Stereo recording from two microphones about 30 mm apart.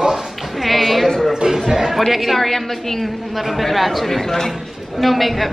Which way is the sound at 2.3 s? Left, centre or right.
Centre.